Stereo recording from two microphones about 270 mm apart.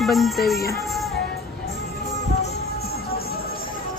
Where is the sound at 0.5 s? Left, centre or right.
Left.